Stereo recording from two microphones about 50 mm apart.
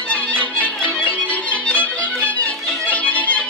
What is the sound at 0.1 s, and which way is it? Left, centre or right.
Music, left.